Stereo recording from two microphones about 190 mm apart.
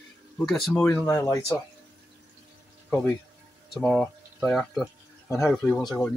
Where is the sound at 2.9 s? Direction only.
10° left (ahead or behind).